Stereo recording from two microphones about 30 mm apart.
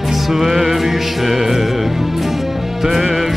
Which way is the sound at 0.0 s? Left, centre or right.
Centre.